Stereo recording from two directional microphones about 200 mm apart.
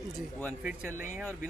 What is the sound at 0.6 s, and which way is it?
Speech, 5° right (ahead or behind).